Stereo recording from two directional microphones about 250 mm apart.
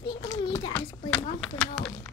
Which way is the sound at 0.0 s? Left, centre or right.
Centre.